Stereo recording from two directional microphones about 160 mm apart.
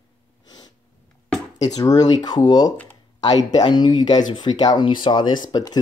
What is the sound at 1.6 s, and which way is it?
Speech, 25° left (ahead or behind).